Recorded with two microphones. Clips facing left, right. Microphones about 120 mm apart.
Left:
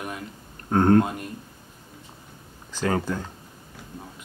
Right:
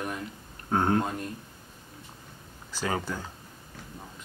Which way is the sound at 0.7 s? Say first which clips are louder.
Left 7 dB; 5° right (ahead or behind).